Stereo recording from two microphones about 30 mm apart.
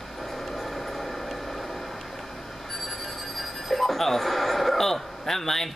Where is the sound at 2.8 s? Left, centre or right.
Centre.